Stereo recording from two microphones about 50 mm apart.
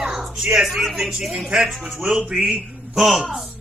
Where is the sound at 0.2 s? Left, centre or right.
Centre.